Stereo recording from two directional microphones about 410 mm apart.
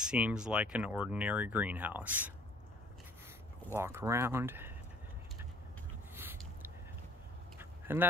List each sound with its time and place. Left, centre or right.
0.0 s speech: centre
3.7 s speech: centre
6.1 s a sound: centre